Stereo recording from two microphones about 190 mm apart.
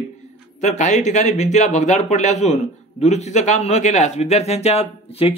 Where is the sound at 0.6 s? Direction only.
40° left (ahead or behind).